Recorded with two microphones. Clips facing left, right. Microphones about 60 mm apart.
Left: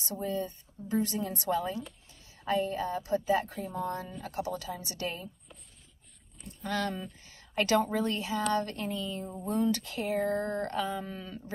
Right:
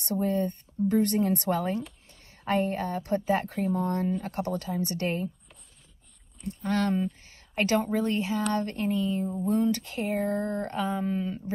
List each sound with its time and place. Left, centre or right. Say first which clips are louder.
0.0 s a woman's voice: right 6 dB; right
3.4 s a woman's voice: right 6 dB; right
6.6 s speech: right 5 dB; right
7.2 s a sound: left 4 dB; right
7.8 s speech: right 3 dB; right
10.3 s a sound: right 2 dB; left
10.6 s speech: right 3 dB; right